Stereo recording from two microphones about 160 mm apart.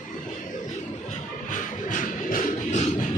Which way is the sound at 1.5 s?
55° left (ahead or behind).